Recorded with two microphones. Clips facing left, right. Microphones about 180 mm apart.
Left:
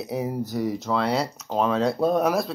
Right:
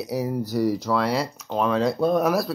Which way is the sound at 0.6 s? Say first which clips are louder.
Right 5 dB; 80° right.